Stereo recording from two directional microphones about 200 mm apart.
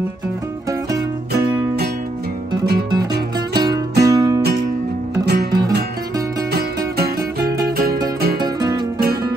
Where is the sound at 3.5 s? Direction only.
20° right (ahead or behind).